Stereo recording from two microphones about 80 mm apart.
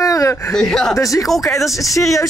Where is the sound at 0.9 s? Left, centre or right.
Left.